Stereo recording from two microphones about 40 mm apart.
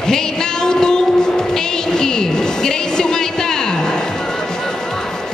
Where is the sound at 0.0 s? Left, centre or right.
Centre.